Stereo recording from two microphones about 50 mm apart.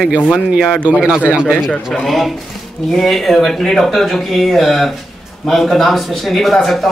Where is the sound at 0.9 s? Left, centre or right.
Centre.